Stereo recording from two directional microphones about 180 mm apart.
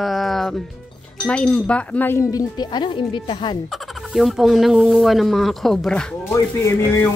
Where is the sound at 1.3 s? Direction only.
5° left (ahead or behind); by 3.6 s 30° left (ahead or behind).